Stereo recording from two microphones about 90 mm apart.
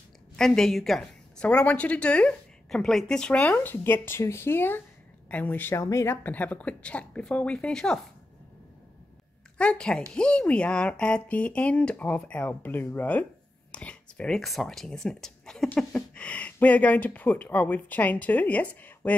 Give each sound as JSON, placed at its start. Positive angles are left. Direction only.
{"t": 0.4, "sound": "a woman's voice", "side_deg": 5}
{"t": 6.2, "sound": "speech", "side_deg": 20}
{"t": 9.6, "sound": "speech", "side_deg": 10}
{"t": 15.7, "sound": "speech", "side_deg": 15}